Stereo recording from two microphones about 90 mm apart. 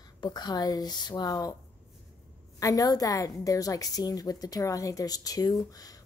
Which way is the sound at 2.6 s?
40° left (ahead or behind).